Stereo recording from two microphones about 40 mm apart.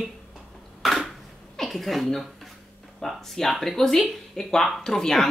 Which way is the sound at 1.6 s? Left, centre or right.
Centre.